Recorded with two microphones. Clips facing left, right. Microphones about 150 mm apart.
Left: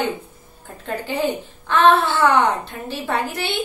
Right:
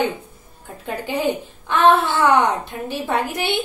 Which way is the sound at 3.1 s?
15° right (ahead or behind).